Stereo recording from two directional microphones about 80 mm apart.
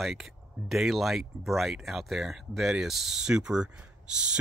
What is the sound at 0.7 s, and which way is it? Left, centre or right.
Speech, centre.